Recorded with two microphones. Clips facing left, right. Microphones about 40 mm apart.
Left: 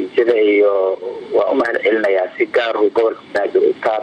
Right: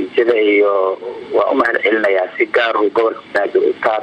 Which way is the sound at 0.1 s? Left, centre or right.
Centre.